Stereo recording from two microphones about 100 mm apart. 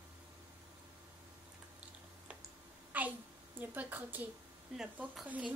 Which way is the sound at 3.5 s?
20° right (ahead or behind).